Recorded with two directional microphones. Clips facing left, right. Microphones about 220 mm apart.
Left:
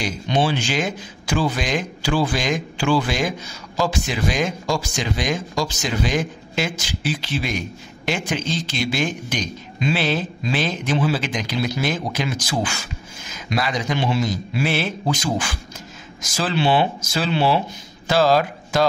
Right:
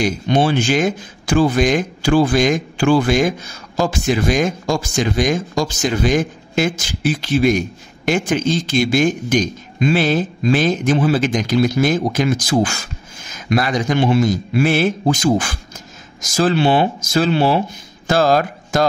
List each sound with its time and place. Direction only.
0.0 s speech: 50° right (ahead or behind)